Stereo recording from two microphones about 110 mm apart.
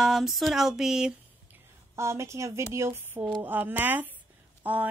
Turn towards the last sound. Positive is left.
turn(degrees=-15)  # may be behind; listen again after turning